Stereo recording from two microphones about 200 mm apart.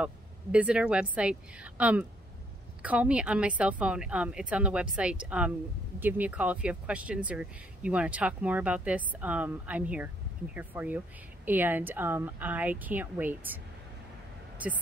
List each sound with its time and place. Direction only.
0.0 s a woman's voice: 5° right (ahead or behind)